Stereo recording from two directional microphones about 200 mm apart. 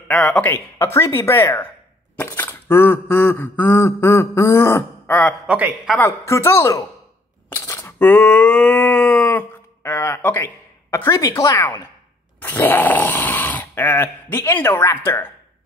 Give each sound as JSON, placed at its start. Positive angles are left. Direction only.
{"t": 0.1, "sound": "speech", "side_deg": 5}
{"t": 2.1, "sound": "a sound", "side_deg": 10}
{"t": 5.5, "sound": "speech", "side_deg": -5}
{"t": 5.9, "sound": "speech", "side_deg": 15}
{"t": 7.4, "sound": "a sound", "side_deg": 10}
{"t": 12.4, "sound": "snoring", "side_deg": 10}